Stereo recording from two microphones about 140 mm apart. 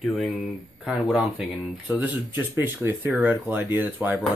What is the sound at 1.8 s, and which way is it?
Speech, 10° right (ahead or behind).